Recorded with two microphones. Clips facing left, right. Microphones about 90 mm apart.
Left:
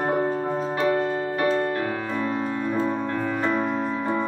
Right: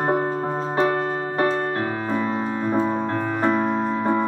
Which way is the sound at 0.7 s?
30° right (ahead or behind).